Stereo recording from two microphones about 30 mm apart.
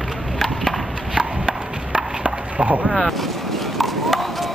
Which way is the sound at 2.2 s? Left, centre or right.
Right.